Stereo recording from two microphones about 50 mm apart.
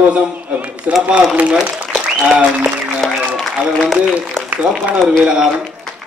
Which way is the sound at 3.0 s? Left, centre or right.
Centre.